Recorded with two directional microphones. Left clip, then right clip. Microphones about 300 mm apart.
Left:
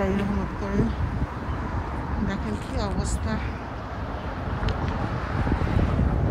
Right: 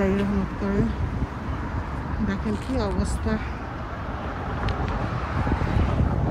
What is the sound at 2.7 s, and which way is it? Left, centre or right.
Speech, centre.